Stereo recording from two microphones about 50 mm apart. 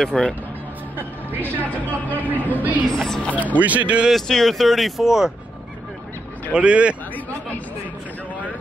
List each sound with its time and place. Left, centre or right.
0.0 s speech: centre
0.9 s speech: right
2.9 s speech: centre
3.2 s speech: left
3.5 s speech: right
4.3 s speech: centre
6.5 s speech: right
7.2 s speech: left